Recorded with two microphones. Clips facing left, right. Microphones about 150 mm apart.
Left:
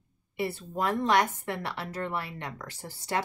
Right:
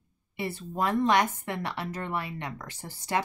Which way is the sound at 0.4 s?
15° right (ahead or behind).